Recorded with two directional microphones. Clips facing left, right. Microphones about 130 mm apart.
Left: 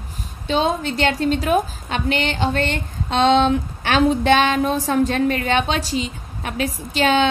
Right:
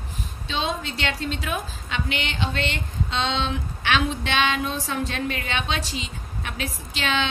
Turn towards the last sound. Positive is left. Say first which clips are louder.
# left 9 dB
turn(degrees=40)  # may be behind; listen again after turning